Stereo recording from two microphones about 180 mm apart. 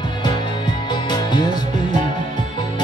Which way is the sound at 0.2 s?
25° left (ahead or behind).